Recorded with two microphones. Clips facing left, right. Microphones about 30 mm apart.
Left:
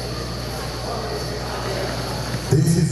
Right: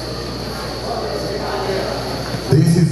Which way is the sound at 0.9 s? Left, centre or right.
Right.